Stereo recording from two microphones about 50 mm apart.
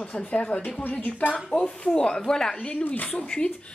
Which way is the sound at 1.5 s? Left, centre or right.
Centre.